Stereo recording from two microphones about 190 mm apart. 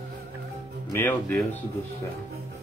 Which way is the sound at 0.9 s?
10° left (ahead or behind).